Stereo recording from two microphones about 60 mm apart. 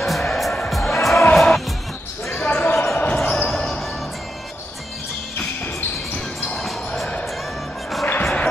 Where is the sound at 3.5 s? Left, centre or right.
Centre.